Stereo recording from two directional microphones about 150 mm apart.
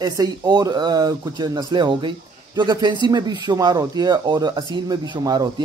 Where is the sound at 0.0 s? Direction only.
25° right (ahead or behind).